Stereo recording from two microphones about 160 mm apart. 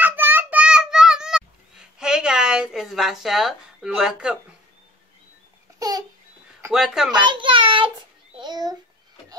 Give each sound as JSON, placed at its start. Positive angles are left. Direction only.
{"t": 0.0, "sound": "child singing", "side_deg": -10}
{"t": 5.8, "sound": "babbling", "side_deg": -25}
{"t": 6.7, "sound": "speech", "side_deg": -5}
{"t": 7.1, "sound": "a child's voice", "side_deg": -30}